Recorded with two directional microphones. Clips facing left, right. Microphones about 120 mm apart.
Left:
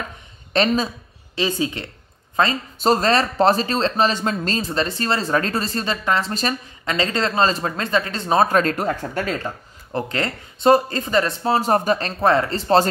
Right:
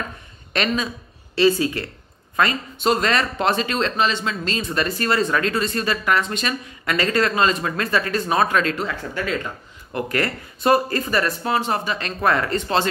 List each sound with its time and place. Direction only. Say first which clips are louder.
0.5 s speech: left 4 dB; 30° left (ahead or behind)
1.3 s speech: right 5 dB; 20° left (ahead or behind)
6.9 s speech: right 1 dB; 25° left (ahead or behind); by 9.5 s 40° left (ahead or behind)
9.9 s speech: right 1 dB; 25° left (ahead or behind); by 12.1 s 45° left (ahead or behind)
12.2 s speech: right 1 dB; 30° left (ahead or behind)